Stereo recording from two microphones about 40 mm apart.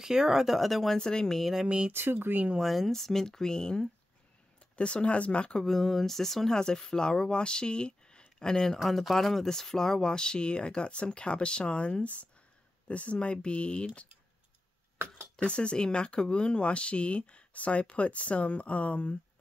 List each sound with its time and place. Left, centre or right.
0.0 s speech: centre
0.6 s speech: centre
0.9 s speech: centre
1.4 s speech: centre
1.9 s speech: right
2.6 s speech: centre
2.9 s speech: centre
4.7 s speech: left
5.6 s speech: centre
8.7 s speech: centre; by 14.0 s left
15.3 s speech: left